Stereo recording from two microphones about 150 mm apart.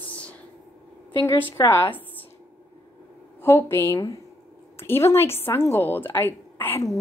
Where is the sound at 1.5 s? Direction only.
15° left (ahead or behind).